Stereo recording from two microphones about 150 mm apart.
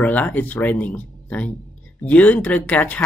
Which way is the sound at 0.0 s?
10° left (ahead or behind).